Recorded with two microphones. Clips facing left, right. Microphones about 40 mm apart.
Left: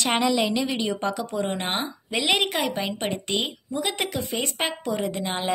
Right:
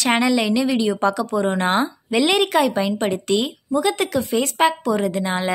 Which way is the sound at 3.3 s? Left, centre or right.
Left.